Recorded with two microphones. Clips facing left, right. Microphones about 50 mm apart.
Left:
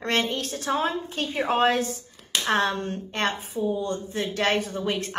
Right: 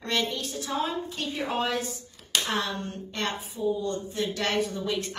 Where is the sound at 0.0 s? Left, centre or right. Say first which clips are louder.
Left 3 dB; left.